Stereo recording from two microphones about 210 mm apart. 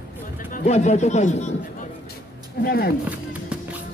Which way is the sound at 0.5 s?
35° left (ahead or behind).